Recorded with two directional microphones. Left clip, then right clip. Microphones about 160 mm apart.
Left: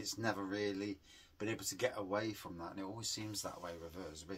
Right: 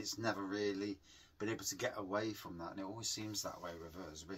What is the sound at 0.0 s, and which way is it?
Speech, 20° left (ahead or behind).